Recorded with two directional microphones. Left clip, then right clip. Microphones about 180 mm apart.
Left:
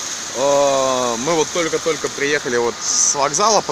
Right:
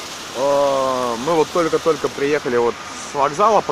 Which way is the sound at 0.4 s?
25° left (ahead or behind).